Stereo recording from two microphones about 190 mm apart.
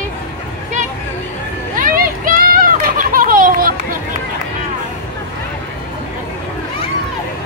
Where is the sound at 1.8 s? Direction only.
50° right (ahead or behind).